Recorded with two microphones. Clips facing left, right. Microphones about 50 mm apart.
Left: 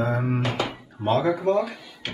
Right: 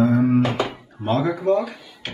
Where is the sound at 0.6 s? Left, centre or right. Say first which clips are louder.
Even; centre.